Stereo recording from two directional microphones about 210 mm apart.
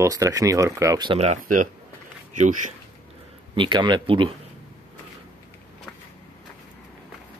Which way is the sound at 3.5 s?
20° right (ahead or behind).